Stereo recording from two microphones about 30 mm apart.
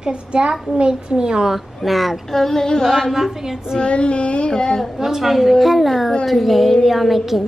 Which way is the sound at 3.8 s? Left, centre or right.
Left.